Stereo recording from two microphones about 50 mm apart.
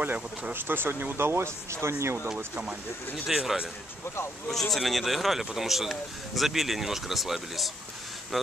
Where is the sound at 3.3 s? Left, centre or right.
Centre.